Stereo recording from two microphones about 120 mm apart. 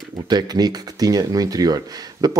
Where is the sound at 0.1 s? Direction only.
35° right (ahead or behind).